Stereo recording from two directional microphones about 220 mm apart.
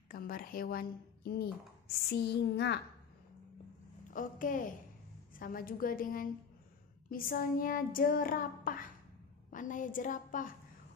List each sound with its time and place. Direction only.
0.1 s speech: 40° left (ahead or behind)
2.0 s a sound: 50° left (ahead or behind)
4.1 s child singing: 35° left (ahead or behind)